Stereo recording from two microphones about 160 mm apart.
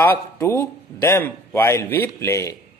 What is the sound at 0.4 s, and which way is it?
A man's voice, 15° left (ahead or behind).